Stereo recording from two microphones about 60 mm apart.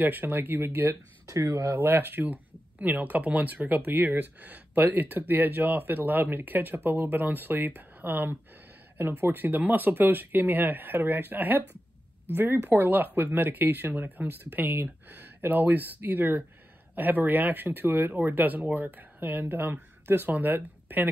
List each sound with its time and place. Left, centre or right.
0.0 s speech: right
1.2 s speech: right
1.8 s speech: right
12.6 s speech: right